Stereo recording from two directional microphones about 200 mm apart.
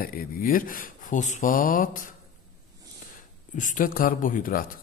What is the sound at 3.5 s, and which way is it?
A man's voice, 40° left (ahead or behind).